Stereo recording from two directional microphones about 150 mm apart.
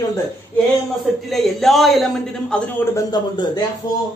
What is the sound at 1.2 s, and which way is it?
A man's voice, centre (ahead or behind).